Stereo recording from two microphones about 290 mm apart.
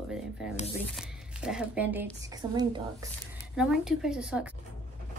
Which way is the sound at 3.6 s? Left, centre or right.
Centre.